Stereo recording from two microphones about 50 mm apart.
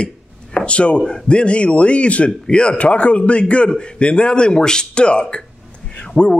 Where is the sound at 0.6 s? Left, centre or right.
Left.